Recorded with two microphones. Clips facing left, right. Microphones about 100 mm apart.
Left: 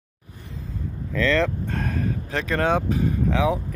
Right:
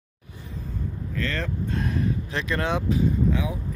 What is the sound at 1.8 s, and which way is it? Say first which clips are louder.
Speech: even; 45° left (ahead or behind).